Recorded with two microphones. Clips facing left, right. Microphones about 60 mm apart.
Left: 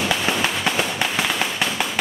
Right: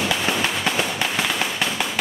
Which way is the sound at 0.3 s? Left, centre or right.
Centre.